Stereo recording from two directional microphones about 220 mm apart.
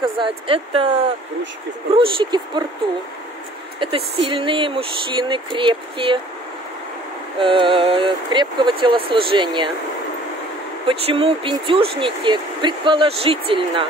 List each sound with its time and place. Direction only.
0.0 s speech: 25° right (ahead or behind)
2.0 s speech: 20° right (ahead or behind)
3.8 s speech: 25° right (ahead or behind)
7.3 s speech: 20° right (ahead or behind)
10.9 s speech: 25° right (ahead or behind)